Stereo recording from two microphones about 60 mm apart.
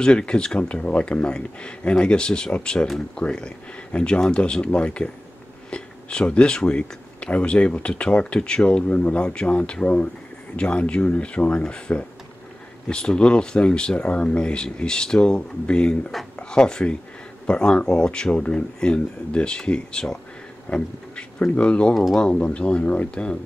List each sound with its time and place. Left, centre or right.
0.0 s speech: centre